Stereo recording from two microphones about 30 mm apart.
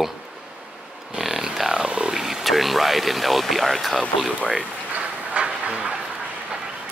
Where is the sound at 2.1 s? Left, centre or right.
Centre.